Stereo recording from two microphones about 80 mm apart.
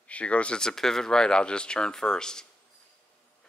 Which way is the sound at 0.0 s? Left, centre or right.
Centre.